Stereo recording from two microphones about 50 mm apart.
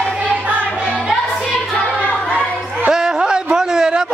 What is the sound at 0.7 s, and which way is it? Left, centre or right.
Music, centre.